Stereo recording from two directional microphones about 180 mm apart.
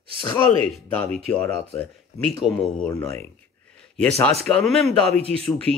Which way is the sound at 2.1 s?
35° left (ahead or behind).